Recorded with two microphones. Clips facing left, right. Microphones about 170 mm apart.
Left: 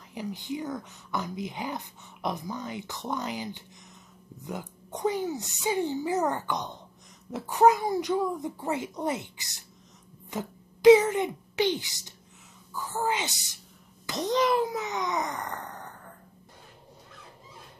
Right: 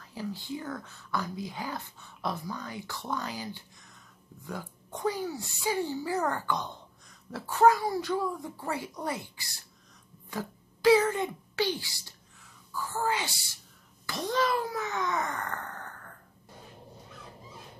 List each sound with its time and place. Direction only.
0.1 s speech: 20° left (ahead or behind)
10.3 s a sound: 20° left (ahead or behind)
12.7 s a child's voice: 20° left (ahead or behind)